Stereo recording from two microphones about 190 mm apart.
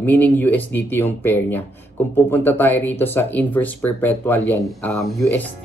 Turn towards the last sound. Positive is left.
turn(degrees=5)  # may be behind; listen again after turning